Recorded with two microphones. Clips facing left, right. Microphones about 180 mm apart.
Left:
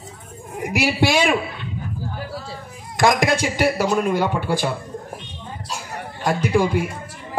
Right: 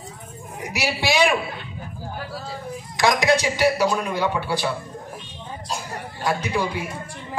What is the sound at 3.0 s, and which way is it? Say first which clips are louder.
A man's voice: left 2 dB; 50° left (ahead or behind).